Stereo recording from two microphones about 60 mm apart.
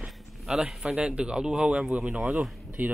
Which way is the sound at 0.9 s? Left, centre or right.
Centre.